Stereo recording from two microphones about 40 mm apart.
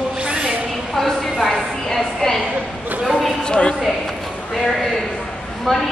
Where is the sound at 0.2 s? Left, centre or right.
Right.